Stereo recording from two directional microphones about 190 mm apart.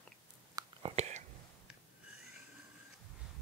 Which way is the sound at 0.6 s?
30° right (ahead or behind).